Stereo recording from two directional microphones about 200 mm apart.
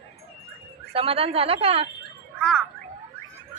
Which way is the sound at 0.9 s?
30° right (ahead or behind).